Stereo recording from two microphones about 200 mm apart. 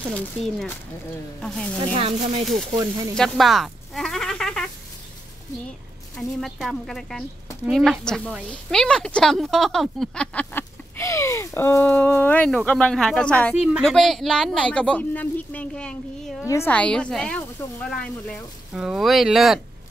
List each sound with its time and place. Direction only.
0.1 s a woman's voice: centre (ahead or behind)
2.0 s speech: 30° right (ahead or behind)
2.8 s speech: 15° right (ahead or behind)
3.2 s a sound: centre (ahead or behind)
6.1 s a woman's voice: centre (ahead or behind)